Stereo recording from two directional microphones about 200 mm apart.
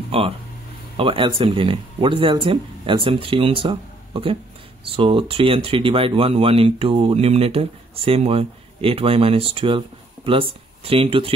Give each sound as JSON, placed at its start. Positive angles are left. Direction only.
{"t": 0.1, "sound": "speech", "side_deg": -30}